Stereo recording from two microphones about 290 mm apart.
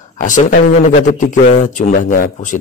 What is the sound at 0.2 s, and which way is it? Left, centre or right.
Speech, left.